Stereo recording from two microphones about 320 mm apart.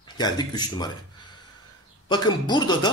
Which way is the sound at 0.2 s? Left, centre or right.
Centre.